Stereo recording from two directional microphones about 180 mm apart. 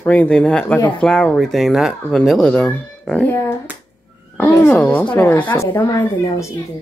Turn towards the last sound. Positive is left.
turn(degrees=15)  # may be behind; listen again after turning